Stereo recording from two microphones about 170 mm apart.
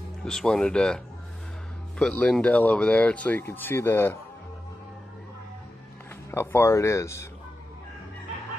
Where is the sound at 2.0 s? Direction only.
5° left (ahead or behind).